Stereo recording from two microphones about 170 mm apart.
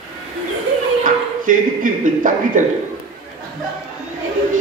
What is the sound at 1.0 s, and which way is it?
Speech, 50° right (ahead or behind).